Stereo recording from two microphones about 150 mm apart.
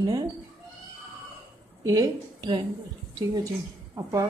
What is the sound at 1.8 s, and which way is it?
Speech, 20° right (ahead or behind).